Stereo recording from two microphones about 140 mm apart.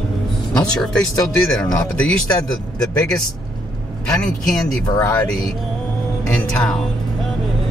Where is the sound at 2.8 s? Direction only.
5° left (ahead or behind).